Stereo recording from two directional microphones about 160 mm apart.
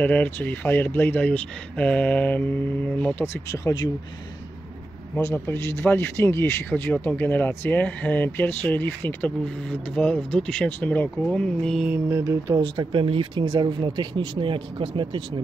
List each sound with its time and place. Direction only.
0.0 s speech: 10° left (ahead or behind)
5.1 s speech: 15° left (ahead or behind)
11.9 s mantra: 15° right (ahead or behind)
12.5 s speech: 30° right (ahead or behind)